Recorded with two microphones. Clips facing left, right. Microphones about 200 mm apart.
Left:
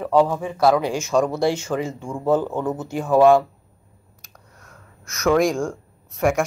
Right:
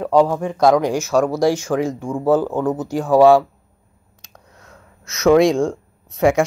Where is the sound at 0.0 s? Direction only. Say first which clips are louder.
Right 3 dB; 15° right (ahead or behind).